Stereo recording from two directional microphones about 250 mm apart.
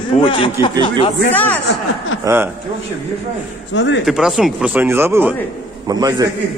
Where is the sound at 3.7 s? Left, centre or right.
Left.